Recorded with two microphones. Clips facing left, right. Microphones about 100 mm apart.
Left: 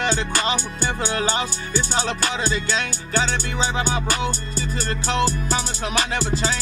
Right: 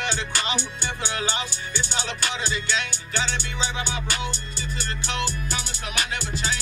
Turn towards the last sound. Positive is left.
turn(degrees=35)  # may be behind; listen again after turning